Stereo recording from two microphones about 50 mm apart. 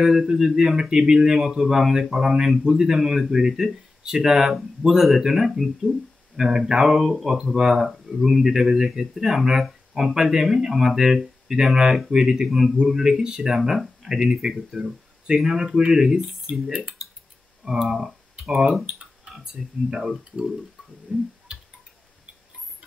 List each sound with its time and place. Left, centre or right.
0.0 s speech: centre
21.5 s music: centre